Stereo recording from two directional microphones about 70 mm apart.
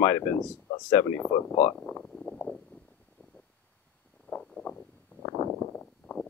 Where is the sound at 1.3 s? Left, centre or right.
Left.